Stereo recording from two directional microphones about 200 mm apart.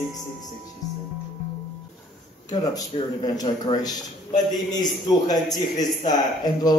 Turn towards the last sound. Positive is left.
turn(degrees=20)  # may be behind; listen again after turning